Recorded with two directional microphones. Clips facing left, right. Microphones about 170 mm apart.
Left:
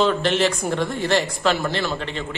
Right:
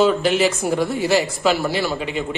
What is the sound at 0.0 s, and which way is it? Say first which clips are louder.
Speech: right 3 dB; 5° right (ahead or behind).